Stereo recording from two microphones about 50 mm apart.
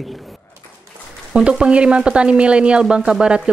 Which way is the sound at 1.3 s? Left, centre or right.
Centre.